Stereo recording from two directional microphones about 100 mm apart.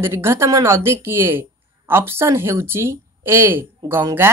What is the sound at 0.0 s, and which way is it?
Speech, 25° right (ahead or behind).